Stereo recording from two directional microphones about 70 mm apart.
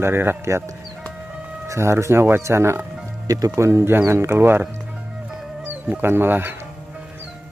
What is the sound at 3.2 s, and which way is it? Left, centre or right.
Speech, right.